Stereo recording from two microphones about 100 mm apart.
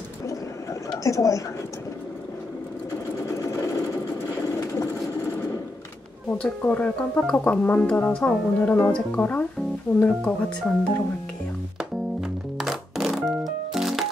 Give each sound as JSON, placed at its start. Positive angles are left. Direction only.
{"t": 0.8, "sound": "speech", "side_deg": 35}
{"t": 6.3, "sound": "speech", "side_deg": 15}
{"t": 11.8, "sound": "music", "side_deg": -5}